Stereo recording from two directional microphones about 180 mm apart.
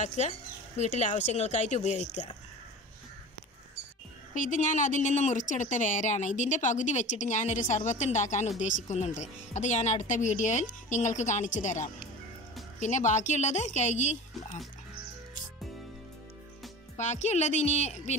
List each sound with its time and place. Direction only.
0.0 s speech: 40° left (ahead or behind)
4.3 s a woman's voice: 45° left (ahead or behind)
16.9 s speech: 40° left (ahead or behind)